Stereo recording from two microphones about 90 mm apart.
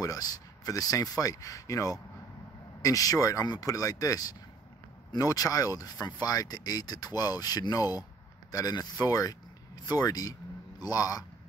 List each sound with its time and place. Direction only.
0.0 s speech: 45° left (ahead or behind)